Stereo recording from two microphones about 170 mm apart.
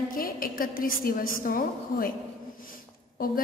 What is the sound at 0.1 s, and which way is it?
A woman's voice, 55° left (ahead or behind).